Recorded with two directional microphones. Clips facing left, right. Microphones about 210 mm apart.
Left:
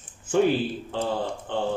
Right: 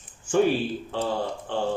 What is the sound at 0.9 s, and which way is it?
Speech, centre (ahead or behind).